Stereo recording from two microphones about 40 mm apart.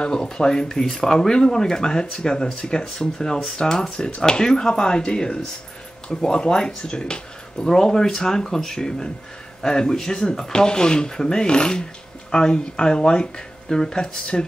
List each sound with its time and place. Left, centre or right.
0.0 s speech: centre